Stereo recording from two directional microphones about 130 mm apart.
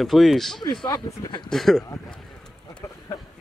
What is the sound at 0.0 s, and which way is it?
Speech, centre (ahead or behind).